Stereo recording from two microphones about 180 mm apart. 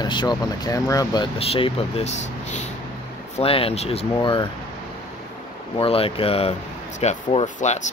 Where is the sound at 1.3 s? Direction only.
35° left (ahead or behind).